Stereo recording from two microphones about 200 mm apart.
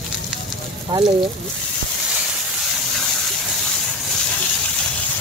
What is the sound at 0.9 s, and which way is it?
Speech, 20° right (ahead or behind).